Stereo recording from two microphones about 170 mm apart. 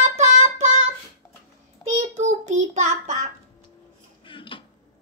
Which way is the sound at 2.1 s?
45° right (ahead or behind).